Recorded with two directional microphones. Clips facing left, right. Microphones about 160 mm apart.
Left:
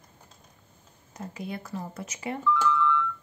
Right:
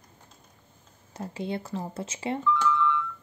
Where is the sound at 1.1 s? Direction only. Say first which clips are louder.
Right 4 dB; 30° right (ahead or behind).